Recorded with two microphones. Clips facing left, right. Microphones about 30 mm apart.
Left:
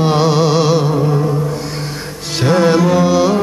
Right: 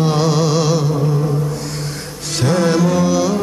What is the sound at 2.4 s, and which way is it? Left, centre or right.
Music, centre.